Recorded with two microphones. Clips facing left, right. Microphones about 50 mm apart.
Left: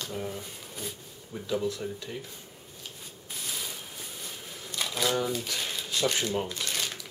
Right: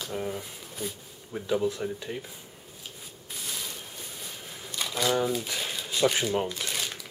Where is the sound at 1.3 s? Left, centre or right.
Right.